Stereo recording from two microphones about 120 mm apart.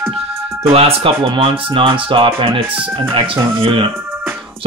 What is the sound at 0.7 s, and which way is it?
Speech, 55° right (ahead or behind).